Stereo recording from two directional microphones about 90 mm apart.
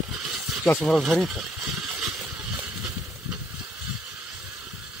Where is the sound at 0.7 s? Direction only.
Centre (ahead or behind).